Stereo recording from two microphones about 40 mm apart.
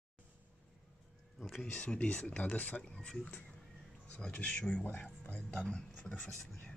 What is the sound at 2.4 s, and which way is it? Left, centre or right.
Speech, left.